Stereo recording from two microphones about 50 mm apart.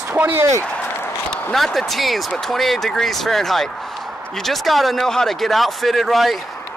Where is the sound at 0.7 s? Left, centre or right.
Left.